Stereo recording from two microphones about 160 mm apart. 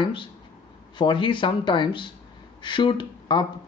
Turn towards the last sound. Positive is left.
turn(degrees=30)  # may be behind; listen again after turning